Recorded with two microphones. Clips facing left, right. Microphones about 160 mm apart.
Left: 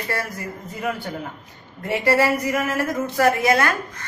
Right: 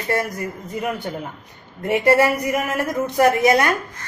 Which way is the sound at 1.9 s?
20° right (ahead or behind).